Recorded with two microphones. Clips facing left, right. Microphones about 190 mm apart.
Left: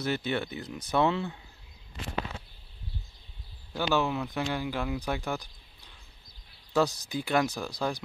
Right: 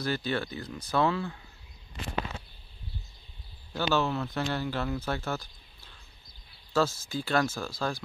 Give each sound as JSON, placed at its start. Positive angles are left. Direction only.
{"t": 0.0, "sound": "speech", "side_deg": 20}
{"t": 3.7, "sound": "speech", "side_deg": 15}